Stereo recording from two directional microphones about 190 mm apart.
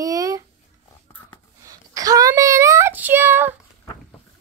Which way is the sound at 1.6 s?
20° right (ahead or behind).